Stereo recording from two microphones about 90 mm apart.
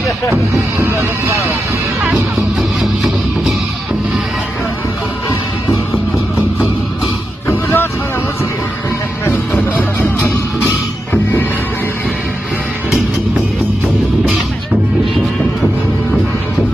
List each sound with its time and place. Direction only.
0.3 s speech: 25° right (ahead or behind)
2.8 s music: centre (ahead or behind)
7.4 s vehicle: 25° left (ahead or behind)
9.2 s music: 25° left (ahead or behind)